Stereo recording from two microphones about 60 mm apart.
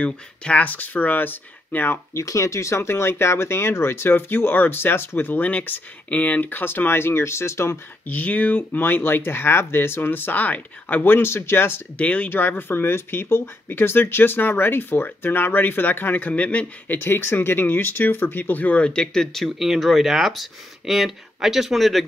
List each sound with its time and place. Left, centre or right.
0.0 s speech: left
2.1 s speech: left
8.1 s speech: left
12.0 s speech: left
12.4 s speech: left; by 19.5 s centre
19.6 s speech: centre